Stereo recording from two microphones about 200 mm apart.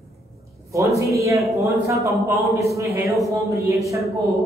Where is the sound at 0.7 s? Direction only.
15° right (ahead or behind).